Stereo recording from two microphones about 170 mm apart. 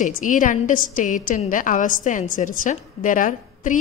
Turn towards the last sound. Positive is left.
turn(degrees=50)  # may be behind; listen again after turning